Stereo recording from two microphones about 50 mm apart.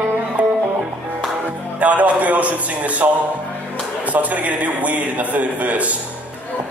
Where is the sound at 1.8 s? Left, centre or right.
Right.